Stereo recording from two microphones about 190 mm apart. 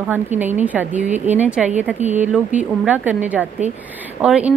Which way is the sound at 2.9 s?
10° right (ahead or behind).